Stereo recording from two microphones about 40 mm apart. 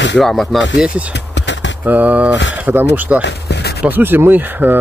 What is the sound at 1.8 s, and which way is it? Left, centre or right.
Speech, right.